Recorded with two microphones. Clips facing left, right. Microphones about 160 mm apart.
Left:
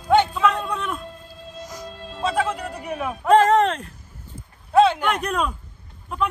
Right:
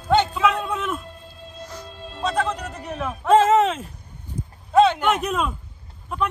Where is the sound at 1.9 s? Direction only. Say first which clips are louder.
Left 1 dB; centre (ahead or behind).